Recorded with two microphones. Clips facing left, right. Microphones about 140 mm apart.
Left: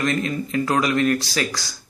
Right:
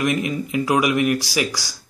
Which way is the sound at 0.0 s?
15° right (ahead or behind).